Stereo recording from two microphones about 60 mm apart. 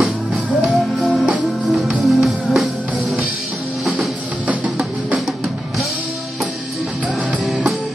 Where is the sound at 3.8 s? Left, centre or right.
Centre.